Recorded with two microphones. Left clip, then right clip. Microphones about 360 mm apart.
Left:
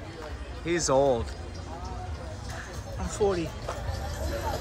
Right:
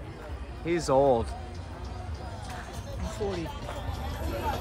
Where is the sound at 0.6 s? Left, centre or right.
Centre.